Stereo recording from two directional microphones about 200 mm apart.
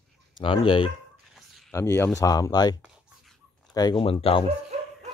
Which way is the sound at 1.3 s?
Centre (ahead or behind).